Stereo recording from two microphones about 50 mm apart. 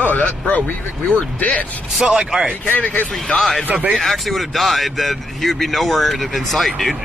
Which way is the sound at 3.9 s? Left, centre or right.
Centre.